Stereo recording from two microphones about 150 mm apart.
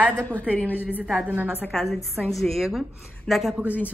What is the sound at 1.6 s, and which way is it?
A woman's voice, 5° left (ahead or behind).